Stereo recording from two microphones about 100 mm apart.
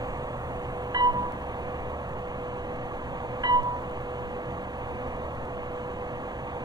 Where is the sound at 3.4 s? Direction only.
40° right (ahead or behind).